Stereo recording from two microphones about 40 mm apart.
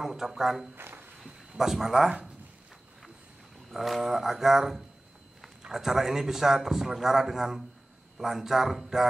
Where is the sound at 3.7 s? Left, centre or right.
Centre.